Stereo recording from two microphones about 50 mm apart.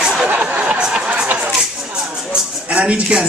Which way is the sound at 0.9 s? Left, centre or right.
Centre.